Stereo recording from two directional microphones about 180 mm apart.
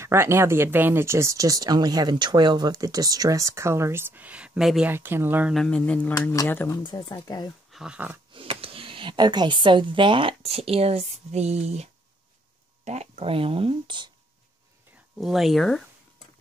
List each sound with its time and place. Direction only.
0.0 s speech: 15° right (ahead or behind)
5.5 s speech: 5° left (ahead or behind)
6.8 s speech: 25° left (ahead or behind)
7.7 s speech: 5° right (ahead or behind)
8.3 s a woman's voice: 30° right (ahead or behind)
15.1 s speech: centre (ahead or behind)